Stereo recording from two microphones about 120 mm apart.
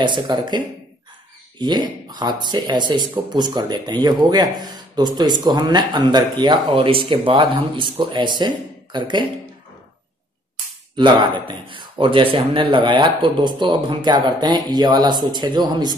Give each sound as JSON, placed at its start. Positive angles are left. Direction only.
{"t": 0.0, "sound": "speech", "side_deg": -40}
{"t": 11.0, "sound": "speech", "side_deg": -45}